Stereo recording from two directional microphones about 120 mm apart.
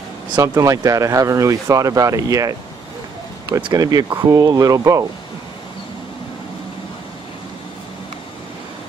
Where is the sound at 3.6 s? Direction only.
30° right (ahead or behind).